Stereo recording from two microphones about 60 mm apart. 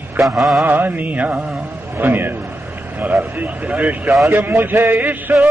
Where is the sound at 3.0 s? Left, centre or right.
Right.